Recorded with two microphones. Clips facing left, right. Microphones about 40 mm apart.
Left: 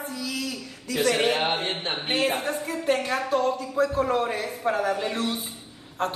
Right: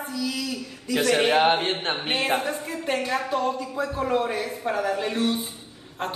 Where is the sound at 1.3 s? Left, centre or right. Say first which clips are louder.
Right 4 dB; right.